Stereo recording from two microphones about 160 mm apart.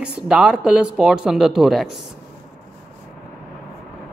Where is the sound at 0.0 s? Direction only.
5° right (ahead or behind).